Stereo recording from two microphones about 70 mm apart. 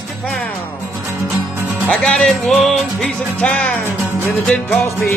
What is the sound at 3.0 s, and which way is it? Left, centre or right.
Music, centre.